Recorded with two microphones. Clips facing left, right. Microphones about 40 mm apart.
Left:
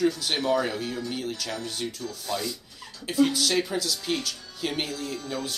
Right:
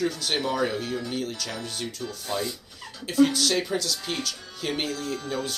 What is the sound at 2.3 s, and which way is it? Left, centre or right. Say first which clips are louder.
Speech: right 1 dB; right.